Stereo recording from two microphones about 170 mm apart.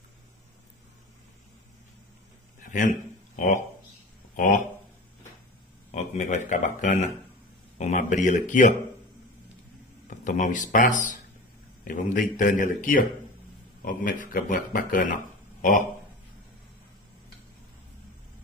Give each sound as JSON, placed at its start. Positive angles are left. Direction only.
{"t": 2.7, "sound": "a man's voice", "side_deg": 50}
{"t": 5.9, "sound": "speech", "side_deg": 45}
{"t": 10.0, "sound": "speech", "side_deg": 45}